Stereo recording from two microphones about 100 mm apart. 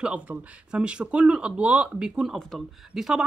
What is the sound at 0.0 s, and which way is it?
Speech, 10° right (ahead or behind).